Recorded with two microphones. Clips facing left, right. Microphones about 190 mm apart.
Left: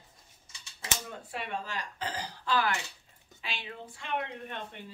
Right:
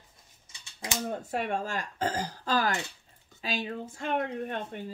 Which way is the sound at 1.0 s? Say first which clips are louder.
Right 8 dB; 45° right (ahead or behind).